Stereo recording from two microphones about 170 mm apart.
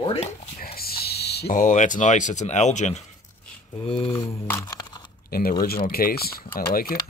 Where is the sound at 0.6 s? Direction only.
65° left (ahead or behind).